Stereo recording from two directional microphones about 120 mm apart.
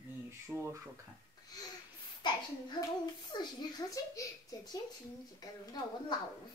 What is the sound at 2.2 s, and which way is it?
A child's voice, 35° left (ahead or behind).